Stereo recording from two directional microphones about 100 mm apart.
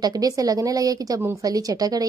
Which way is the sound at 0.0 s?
40° right (ahead or behind).